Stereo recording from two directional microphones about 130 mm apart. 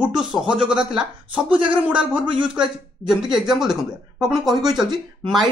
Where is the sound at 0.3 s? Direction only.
5° right (ahead or behind).